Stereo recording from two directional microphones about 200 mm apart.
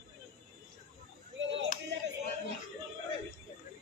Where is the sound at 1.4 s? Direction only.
65° right (ahead or behind).